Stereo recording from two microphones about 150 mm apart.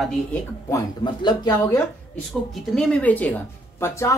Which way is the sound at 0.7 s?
25° left (ahead or behind).